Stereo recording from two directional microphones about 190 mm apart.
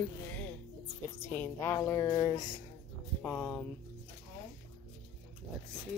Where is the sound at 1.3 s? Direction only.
10° left (ahead or behind).